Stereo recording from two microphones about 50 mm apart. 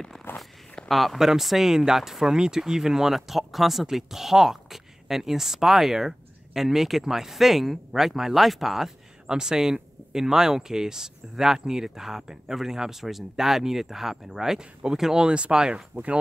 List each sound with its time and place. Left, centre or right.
0.3 s zipper: left
0.8 s speech: centre